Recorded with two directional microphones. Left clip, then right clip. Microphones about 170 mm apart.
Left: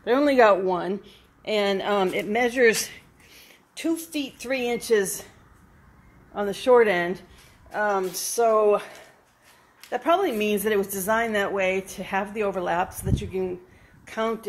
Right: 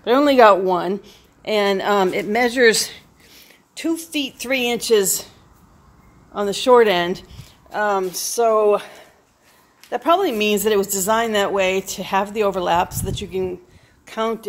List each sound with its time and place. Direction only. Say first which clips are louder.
0.0 s a woman's voice: right 6 dB; 15° right (ahead or behind)
6.3 s a woman's voice: right 5 dB; 20° right (ahead or behind)